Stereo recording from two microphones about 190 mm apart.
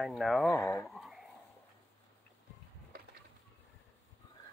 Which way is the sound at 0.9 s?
Centre (ahead or behind).